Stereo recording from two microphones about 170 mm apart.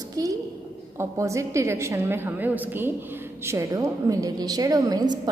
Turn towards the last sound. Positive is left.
turn(degrees=-25)  # may be behind; listen again after turning